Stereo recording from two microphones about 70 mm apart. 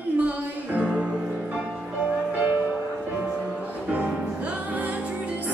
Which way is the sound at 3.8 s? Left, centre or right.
Right.